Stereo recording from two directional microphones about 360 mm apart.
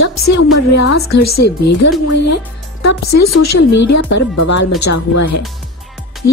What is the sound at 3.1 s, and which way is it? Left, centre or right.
A woman's voice, left.